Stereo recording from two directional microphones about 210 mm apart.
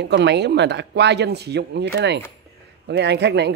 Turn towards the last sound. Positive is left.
turn(degrees=-55)  # may be behind; listen again after turning